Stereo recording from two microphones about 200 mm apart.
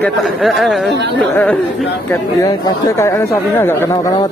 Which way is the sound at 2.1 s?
15° left (ahead or behind).